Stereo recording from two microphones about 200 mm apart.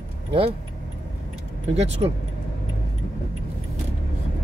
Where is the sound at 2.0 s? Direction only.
25° right (ahead or behind).